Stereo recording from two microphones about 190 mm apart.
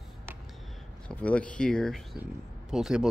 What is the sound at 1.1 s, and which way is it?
Speech, 5° left (ahead or behind).